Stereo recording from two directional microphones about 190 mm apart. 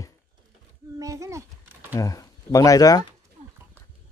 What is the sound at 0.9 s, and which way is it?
Babbling, 15° right (ahead or behind).